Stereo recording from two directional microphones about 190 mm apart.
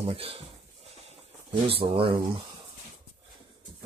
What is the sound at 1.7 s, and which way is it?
Speech, 30° right (ahead or behind).